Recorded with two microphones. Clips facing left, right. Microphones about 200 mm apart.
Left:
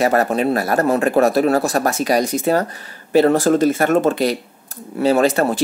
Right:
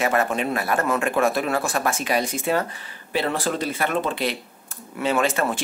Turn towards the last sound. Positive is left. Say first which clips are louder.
# left 7 dB
turn(degrees=40)  # may be behind; listen again after turning